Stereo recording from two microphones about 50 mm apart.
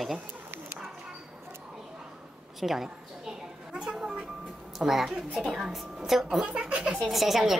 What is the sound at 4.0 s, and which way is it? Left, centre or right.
Vehicle, centre.